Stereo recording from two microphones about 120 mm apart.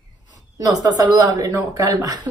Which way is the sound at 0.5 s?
30° right (ahead or behind).